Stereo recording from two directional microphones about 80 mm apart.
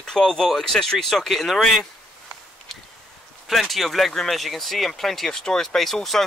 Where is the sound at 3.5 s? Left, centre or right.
Centre.